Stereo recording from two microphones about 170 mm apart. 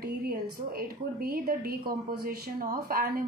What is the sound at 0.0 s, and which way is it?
A woman's voice, 60° right (ahead or behind).